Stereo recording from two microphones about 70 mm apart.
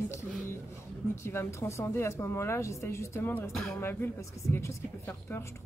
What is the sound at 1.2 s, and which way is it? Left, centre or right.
Speech, left.